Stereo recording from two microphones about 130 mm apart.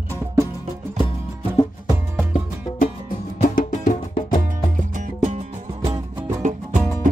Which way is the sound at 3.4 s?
90° left.